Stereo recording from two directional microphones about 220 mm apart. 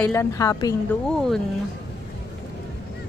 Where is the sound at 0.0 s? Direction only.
10° left (ahead or behind).